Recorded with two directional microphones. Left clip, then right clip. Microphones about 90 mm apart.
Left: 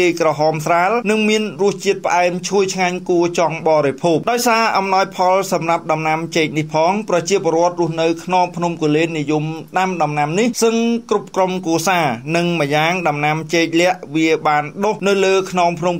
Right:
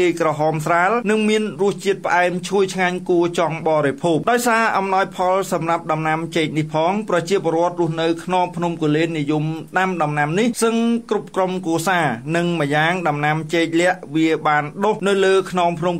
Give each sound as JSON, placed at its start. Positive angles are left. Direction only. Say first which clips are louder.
{"t": 0.0, "sound": "speech", "louder": "left 3 dB", "side_deg": 25}
{"t": 1.0, "sound": "speech", "louder": "left 2 dB", "side_deg": 20}
{"t": 4.3, "sound": "speech", "louder": "even", "side_deg": 35}